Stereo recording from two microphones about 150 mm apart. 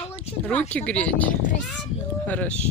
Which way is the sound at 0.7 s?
10° left (ahead or behind).